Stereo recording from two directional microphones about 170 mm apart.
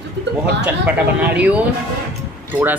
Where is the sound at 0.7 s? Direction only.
10° right (ahead or behind).